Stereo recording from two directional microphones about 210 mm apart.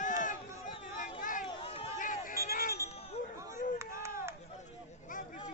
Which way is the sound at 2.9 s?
30° left (ahead or behind).